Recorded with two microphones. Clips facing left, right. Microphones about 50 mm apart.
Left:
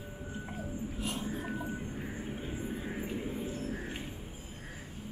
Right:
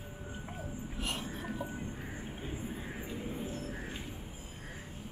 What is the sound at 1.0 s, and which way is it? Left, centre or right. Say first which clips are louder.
Music: even; right.